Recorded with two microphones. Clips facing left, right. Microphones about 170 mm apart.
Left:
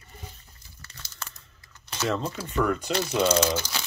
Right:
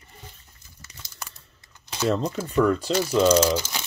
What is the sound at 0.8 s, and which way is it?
Crumpling, 15° right (ahead or behind).